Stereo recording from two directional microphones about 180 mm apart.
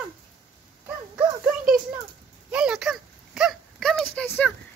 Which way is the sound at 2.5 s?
5° right (ahead or behind).